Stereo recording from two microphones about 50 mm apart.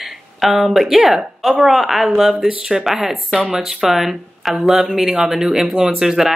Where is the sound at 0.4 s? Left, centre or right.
Centre.